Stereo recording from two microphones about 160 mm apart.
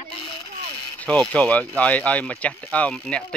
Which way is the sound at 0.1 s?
30° left (ahead or behind).